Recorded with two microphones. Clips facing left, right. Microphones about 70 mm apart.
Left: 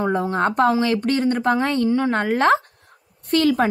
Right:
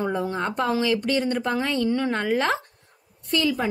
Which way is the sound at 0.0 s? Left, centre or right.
Left.